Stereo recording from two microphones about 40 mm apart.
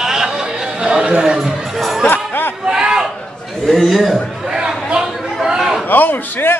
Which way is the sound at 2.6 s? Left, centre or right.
Centre.